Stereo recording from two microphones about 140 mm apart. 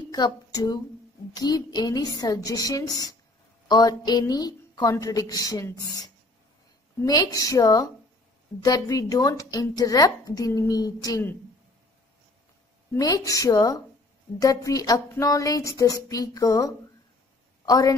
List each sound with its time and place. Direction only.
0.1 s a woman's voice: 25° left (ahead or behind)
12.9 s a woman's voice: 25° left (ahead or behind)